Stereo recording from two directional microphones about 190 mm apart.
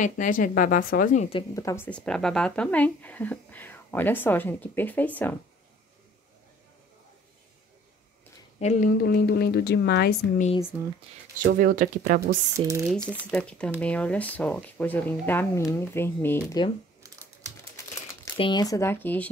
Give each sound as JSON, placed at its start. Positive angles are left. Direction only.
{"t": 0.0, "sound": "speech", "side_deg": 45}
{"t": 1.5, "sound": "speech", "side_deg": 15}
{"t": 8.5, "sound": "speech", "side_deg": 40}
{"t": 9.0, "sound": "a woman's voice", "side_deg": 55}
{"t": 10.7, "sound": "speech", "side_deg": -10}
{"t": 11.4, "sound": "speech", "side_deg": -45}
{"t": 12.5, "sound": "speech", "side_deg": -15}
{"t": 12.8, "sound": "speech", "side_deg": 5}
{"t": 18.4, "sound": "speech", "side_deg": 20}